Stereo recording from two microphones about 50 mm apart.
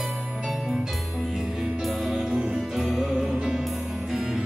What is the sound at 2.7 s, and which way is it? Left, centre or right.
Music, centre.